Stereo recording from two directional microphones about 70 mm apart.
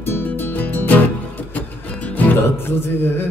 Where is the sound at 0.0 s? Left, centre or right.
Left.